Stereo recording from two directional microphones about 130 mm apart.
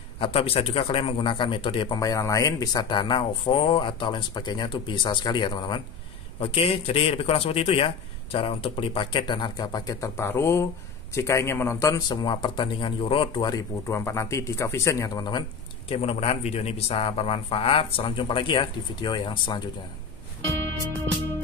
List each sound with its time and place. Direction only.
0.2 s a man's voice: 45° left (ahead or behind)
2.0 s speech: 25° left (ahead or behind)
6.4 s a man's voice: 45° left (ahead or behind); by 12.0 s 20° left (ahead or behind)
12.1 s speech: 35° left (ahead or behind)
13.5 s speech: 25° left (ahead or behind)
15.9 s a man's voice: 50° left (ahead or behind)